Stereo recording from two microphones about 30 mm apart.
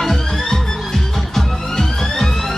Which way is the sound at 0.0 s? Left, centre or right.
Centre.